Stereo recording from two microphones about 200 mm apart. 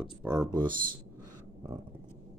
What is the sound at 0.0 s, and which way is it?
Speech, 10° right (ahead or behind).